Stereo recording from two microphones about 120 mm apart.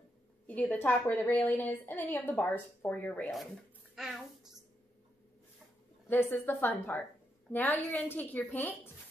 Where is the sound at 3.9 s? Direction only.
5° right (ahead or behind).